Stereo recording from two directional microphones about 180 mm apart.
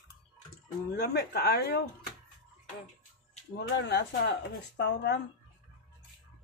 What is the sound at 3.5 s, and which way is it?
Speech, 65° left (ahead or behind).